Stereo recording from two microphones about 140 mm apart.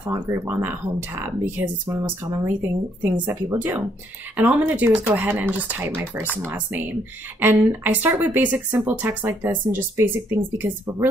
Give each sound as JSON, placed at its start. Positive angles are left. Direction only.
{"t": 0.0, "sound": "speech", "side_deg": -15}